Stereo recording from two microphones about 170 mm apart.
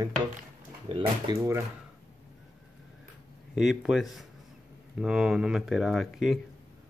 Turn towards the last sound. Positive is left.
turn(degrees=0)  # may be behind; listen again after turning